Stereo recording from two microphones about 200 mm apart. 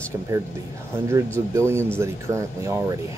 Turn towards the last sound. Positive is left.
turn(degrees=-15)  # may be behind; listen again after turning